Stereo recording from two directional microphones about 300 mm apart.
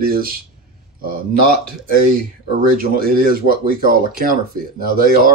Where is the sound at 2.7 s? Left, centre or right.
Right.